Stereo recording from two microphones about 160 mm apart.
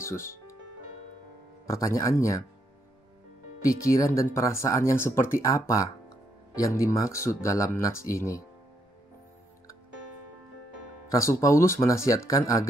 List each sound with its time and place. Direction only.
0.0 s music: 15° left (ahead or behind)
1.7 s speech: 20° left (ahead or behind)
3.6 s speech: 20° left (ahead or behind)
11.1 s speech: 20° left (ahead or behind)